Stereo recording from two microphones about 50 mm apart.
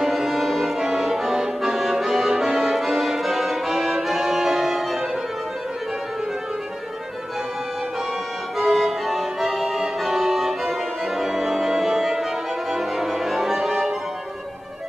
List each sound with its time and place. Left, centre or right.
0.0 s music: centre
8.5 s music: centre